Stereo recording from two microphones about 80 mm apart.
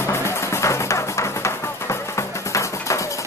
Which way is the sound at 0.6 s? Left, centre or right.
Left.